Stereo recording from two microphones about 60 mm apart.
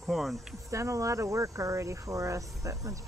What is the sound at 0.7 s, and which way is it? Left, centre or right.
Speech, right.